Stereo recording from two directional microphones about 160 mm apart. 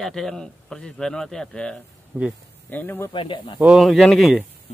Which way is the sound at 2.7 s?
10° left (ahead or behind).